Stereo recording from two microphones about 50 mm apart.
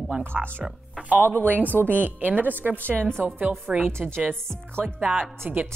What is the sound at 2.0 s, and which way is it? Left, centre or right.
A woman's voice, right.